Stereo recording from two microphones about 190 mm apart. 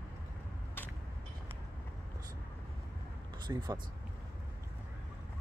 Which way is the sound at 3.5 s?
20° right (ahead or behind).